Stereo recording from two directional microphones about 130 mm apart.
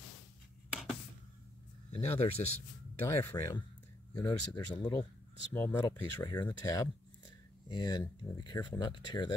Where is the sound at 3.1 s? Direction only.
20° left (ahead or behind).